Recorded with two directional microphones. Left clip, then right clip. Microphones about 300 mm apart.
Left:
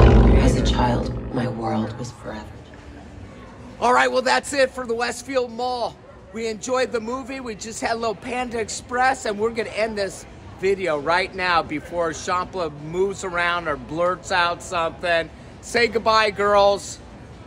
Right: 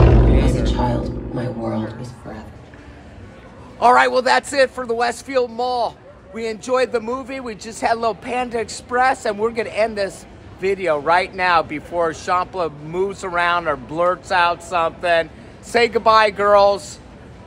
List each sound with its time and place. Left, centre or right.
0.7 s music: left
3.8 s a man's voice: centre